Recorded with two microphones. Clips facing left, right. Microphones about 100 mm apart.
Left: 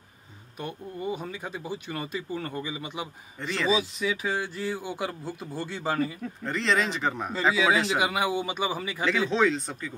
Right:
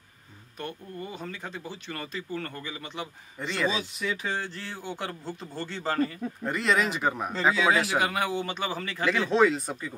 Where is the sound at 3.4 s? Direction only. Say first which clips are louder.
Even; 5° right (ahead or behind).